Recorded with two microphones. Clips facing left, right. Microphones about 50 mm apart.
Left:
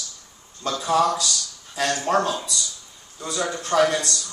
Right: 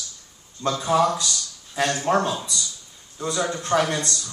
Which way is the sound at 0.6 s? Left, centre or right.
Centre.